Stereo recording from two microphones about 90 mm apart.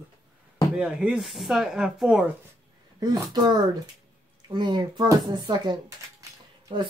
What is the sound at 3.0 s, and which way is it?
Speech, 50° right (ahead or behind).